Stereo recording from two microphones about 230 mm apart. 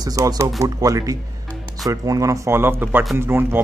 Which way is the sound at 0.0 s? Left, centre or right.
Centre.